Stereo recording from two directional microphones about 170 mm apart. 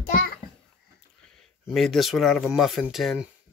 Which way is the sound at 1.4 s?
Centre (ahead or behind).